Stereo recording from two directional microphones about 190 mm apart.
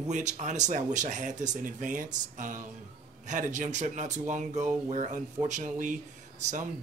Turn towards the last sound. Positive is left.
turn(degrees=-40)  # may be behind; listen again after turning